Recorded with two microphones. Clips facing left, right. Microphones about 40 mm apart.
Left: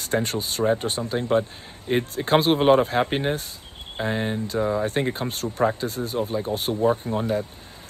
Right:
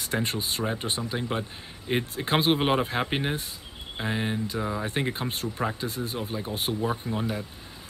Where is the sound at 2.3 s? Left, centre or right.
Centre.